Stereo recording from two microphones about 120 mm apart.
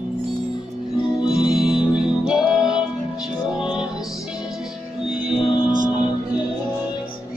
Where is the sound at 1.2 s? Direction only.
5° right (ahead or behind).